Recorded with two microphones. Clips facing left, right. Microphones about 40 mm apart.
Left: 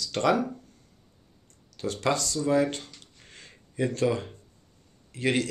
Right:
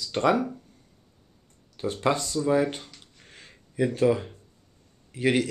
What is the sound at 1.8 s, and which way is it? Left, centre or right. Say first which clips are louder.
Speech: right 2 dB; right.